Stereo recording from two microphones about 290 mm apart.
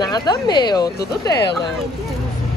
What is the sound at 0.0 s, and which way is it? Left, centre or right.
Speech, centre.